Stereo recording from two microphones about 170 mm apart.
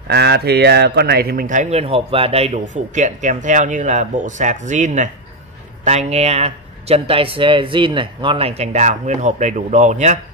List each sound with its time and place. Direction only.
0.1 s speech: 75° right (ahead or behind); by 10.1 s 45° right (ahead or behind)